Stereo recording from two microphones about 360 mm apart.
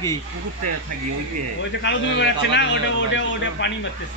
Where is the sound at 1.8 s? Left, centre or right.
Left.